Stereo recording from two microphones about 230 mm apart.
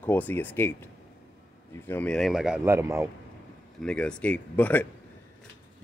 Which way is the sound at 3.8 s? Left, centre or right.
Centre.